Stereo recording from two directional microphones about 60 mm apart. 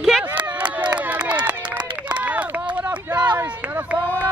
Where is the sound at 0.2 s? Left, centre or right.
Right.